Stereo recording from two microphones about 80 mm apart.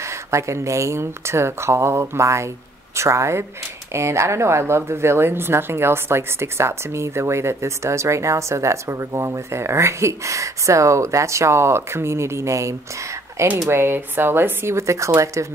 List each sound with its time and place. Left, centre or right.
0.0 s speech: right